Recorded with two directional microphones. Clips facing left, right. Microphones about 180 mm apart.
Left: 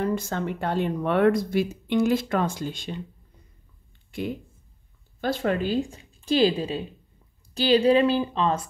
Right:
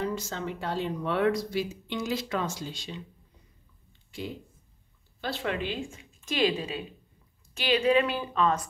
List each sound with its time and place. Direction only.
0.0 s speech: 55° left (ahead or behind)
4.1 s speech: 55° left (ahead or behind)
5.2 s speech: 45° left (ahead or behind); by 8.6 s 30° left (ahead or behind)